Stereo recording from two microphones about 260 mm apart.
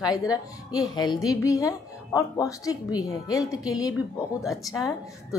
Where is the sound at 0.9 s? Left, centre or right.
Centre.